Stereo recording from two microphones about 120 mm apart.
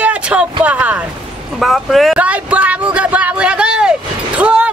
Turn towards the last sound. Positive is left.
turn(degrees=-10)  # may be behind; listen again after turning